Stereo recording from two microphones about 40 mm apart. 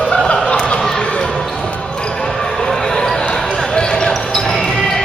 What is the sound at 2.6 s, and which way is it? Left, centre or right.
Basketball bounce, centre.